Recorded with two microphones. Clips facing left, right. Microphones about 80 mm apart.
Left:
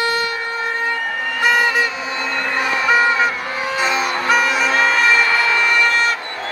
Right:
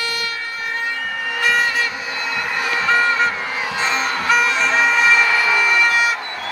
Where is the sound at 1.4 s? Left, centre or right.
Left.